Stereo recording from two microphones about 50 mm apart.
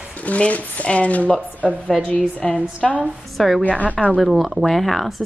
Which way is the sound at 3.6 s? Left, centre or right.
Left.